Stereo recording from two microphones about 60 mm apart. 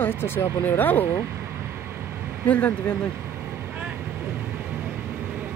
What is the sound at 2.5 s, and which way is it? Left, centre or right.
Speech, left.